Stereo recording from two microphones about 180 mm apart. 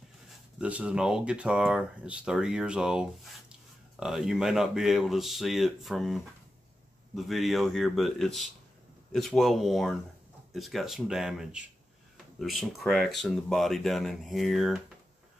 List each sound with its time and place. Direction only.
0.6 s speech: 5° right (ahead or behind)